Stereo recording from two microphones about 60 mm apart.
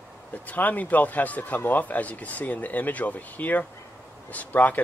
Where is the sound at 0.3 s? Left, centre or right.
Left.